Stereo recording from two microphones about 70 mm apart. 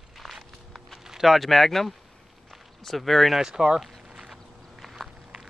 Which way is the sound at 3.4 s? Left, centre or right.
Centre.